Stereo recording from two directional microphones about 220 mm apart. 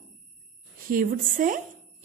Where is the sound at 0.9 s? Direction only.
40° right (ahead or behind).